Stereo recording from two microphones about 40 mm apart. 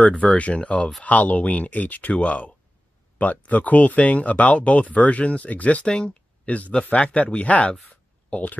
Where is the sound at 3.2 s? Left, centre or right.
Left.